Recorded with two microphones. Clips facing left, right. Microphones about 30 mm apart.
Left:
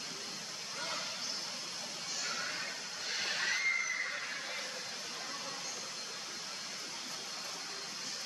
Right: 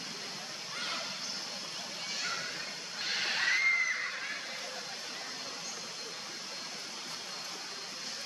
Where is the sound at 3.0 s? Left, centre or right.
Right.